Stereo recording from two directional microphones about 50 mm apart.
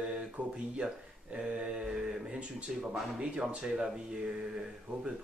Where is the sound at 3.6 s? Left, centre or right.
Centre.